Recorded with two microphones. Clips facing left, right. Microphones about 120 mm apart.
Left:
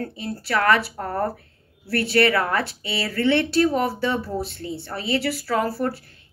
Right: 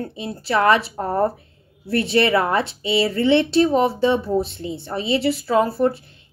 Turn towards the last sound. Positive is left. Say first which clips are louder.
# right 5 dB
turn(degrees=-20)  # may be behind; listen again after turning